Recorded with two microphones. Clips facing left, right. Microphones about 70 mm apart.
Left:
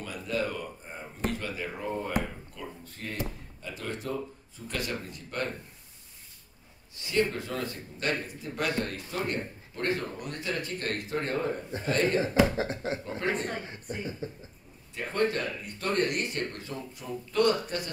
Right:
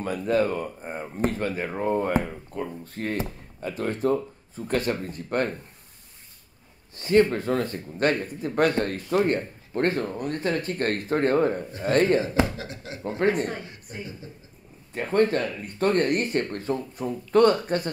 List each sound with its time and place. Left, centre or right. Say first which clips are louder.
0.0 s a man's voice: right 8 dB; right
7.0 s a man's voice: right 8 dB; right
12.4 s speech: left 5 dB; left
13.2 s a man's voice: right 8 dB; right
14.2 s speech: left 5 dB; left
15.0 s speech: right 6 dB; right